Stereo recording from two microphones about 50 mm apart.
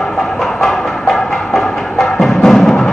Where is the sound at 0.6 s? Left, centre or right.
Centre.